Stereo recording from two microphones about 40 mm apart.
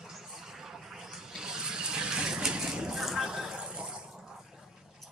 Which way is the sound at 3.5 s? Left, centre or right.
Right.